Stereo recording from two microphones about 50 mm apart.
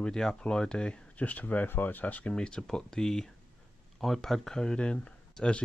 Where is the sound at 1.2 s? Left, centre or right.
Left.